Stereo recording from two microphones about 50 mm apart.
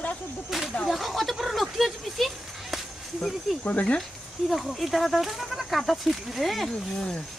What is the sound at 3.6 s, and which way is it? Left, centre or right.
Speech, left.